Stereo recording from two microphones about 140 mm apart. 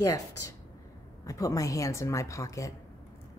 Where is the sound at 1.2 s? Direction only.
25° left (ahead or behind).